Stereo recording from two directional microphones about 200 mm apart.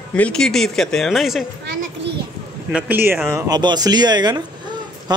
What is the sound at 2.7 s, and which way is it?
Speech, 10° right (ahead or behind).